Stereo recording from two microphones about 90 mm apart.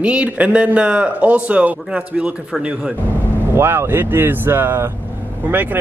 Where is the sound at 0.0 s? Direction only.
15° right (ahead or behind).